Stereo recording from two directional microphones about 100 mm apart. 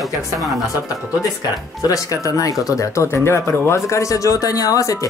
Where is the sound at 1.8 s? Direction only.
35° left (ahead or behind).